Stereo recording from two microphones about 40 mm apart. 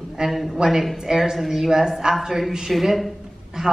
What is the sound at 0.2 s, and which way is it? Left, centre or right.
A man's voice, centre.